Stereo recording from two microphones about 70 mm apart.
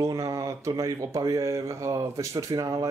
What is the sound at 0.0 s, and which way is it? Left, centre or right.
Speech, right.